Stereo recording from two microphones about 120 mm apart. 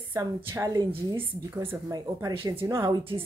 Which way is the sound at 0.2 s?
30° right (ahead or behind).